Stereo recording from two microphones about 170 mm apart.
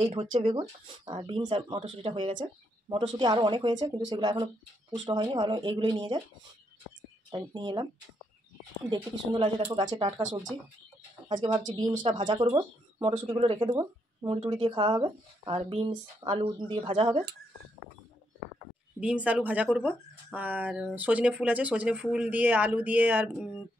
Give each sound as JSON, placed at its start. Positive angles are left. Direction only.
{"t": 0.0, "sound": "speech", "side_deg": -35}
{"t": 7.2, "sound": "speech", "side_deg": -25}
{"t": 8.9, "sound": "speech", "side_deg": -25}
{"t": 11.2, "sound": "speech", "side_deg": -25}
{"t": 18.9, "sound": "speech", "side_deg": -10}